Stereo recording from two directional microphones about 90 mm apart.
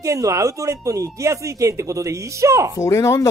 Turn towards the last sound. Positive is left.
turn(degrees=35)  # may be behind; listen again after turning